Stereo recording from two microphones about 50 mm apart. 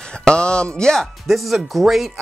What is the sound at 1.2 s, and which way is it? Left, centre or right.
Speech, centre.